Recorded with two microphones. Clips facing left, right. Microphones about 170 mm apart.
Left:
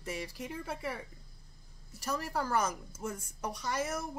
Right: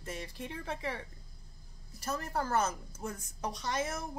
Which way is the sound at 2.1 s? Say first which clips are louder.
Even; 15° left (ahead or behind).